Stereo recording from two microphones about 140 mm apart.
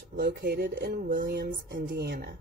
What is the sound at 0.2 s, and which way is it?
A woman's voice, 90° right.